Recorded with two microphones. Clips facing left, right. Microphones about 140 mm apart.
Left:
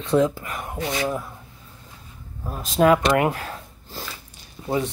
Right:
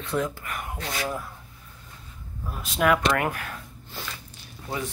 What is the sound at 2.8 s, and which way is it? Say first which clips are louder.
Speech: left 5 dB; 20° left (ahead or behind).